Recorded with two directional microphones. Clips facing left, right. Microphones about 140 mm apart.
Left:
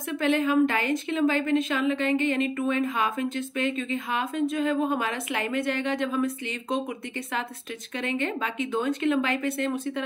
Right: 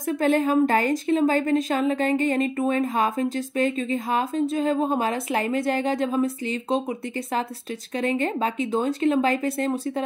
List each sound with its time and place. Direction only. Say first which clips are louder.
0.0 s speech: right 3 dB; 40° right (ahead or behind)